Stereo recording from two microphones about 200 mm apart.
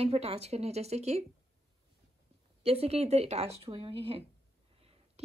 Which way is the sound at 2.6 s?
30° right (ahead or behind).